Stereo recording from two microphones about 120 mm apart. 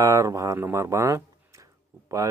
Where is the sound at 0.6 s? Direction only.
25° right (ahead or behind).